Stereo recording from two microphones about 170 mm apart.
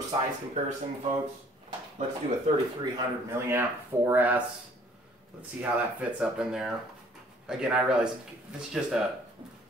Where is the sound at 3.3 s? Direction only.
15° right (ahead or behind).